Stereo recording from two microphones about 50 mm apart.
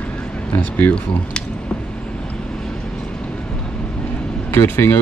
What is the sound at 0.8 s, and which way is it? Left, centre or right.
Speech, left.